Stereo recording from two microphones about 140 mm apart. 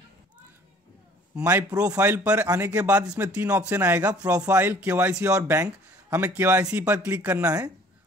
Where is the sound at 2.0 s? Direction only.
15° right (ahead or behind).